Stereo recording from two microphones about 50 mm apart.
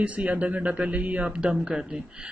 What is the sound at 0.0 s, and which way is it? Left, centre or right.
Speech, right.